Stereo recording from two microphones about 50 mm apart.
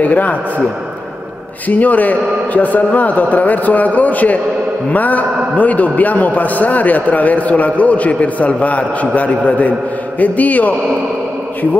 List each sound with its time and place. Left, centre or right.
0.0 s a man's voice: left
1.7 s a man's voice: left